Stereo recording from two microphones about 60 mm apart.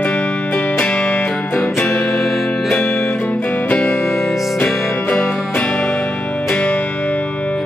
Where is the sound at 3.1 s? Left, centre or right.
Left.